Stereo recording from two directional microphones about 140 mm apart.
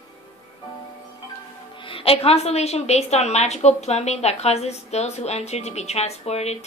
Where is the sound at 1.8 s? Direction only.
40° left (ahead or behind).